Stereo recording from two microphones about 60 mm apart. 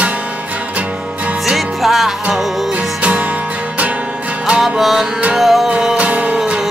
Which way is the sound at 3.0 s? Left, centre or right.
Right.